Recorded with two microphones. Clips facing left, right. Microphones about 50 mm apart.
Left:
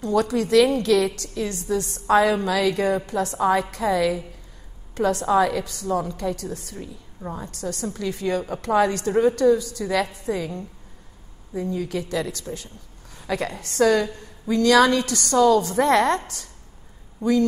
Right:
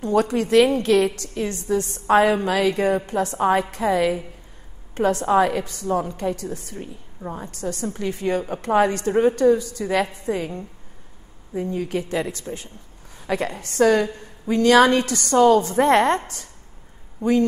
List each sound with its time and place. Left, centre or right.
0.0 s a woman's voice: right